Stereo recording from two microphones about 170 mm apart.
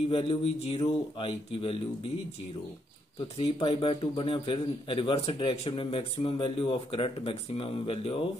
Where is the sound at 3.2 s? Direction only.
35° left (ahead or behind).